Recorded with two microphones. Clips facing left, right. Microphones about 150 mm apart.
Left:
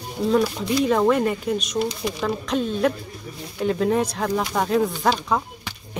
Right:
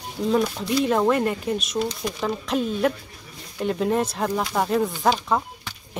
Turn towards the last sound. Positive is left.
turn(degrees=0)  # may be behind; listen again after turning